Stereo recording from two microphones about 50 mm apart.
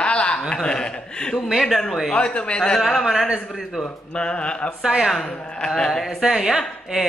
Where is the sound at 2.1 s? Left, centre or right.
Left.